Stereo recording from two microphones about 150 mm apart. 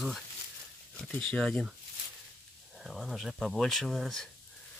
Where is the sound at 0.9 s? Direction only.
5° left (ahead or behind).